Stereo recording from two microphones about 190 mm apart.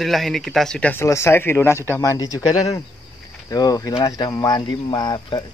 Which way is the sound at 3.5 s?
20° left (ahead or behind).